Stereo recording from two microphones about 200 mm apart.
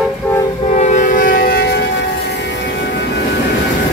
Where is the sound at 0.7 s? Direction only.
35° left (ahead or behind); by 1.8 s 50° left (ahead or behind).